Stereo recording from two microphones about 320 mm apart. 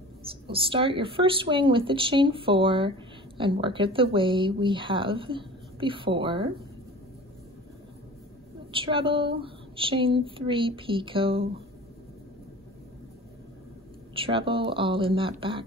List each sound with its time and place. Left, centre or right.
0.5 s speech: centre
8.7 s speech: centre
14.1 s speech: centre